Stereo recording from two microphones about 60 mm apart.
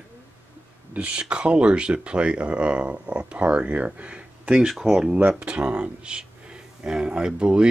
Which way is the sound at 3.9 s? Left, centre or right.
Centre.